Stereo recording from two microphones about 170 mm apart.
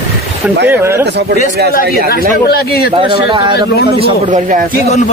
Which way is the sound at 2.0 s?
65° left (ahead or behind).